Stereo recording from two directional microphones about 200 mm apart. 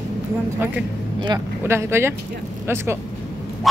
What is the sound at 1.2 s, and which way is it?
Speech, 15° right (ahead or behind).